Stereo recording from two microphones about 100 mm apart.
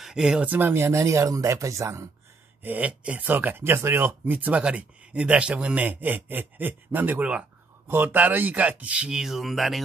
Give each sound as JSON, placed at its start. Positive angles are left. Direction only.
{"t": 0.0, "sound": "speech", "side_deg": -5}
{"t": 2.6, "sound": "speech", "side_deg": -15}